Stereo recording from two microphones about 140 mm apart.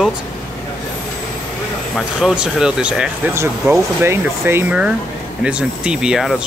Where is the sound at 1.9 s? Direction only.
5° right (ahead or behind).